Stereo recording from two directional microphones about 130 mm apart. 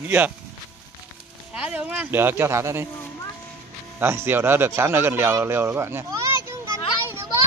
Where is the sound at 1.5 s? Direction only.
10° right (ahead or behind).